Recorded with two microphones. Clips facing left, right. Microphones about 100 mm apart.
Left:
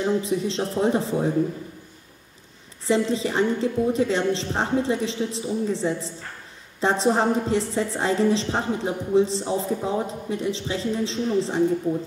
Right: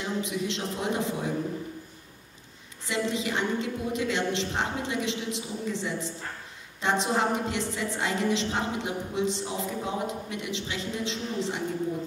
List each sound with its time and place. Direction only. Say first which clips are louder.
0.0 s a woman's voice: left 7 dB; 35° left (ahead or behind)
2.8 s a woman's voice: left 7 dB; 35° left (ahead or behind)